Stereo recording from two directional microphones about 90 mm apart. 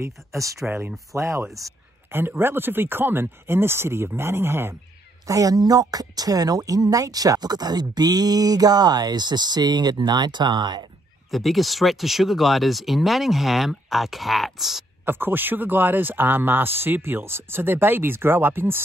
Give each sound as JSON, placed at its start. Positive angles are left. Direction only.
{"t": 0.0, "sound": "speech", "side_deg": -35}
{"t": 0.7, "sound": "speech", "side_deg": -20}
{"t": 1.1, "sound": "speech", "side_deg": -35}
{"t": 2.0, "sound": "speech", "side_deg": -25}
{"t": 5.2, "sound": "a woman's voice", "side_deg": -40}
{"t": 11.2, "sound": "speech", "side_deg": 0}
{"t": 15.0, "sound": "speech", "side_deg": -25}